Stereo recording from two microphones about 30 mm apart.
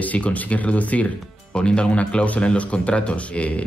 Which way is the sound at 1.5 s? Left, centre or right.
Left.